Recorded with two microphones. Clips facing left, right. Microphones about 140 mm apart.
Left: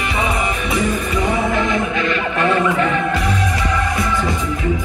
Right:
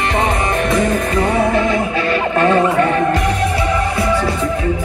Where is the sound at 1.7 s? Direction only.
35° right (ahead or behind).